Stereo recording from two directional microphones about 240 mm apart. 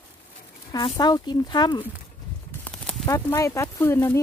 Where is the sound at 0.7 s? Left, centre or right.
Centre.